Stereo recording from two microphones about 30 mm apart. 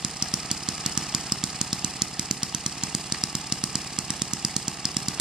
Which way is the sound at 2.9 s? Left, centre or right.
Centre.